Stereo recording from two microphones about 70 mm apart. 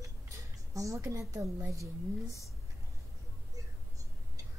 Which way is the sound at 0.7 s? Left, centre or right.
Right.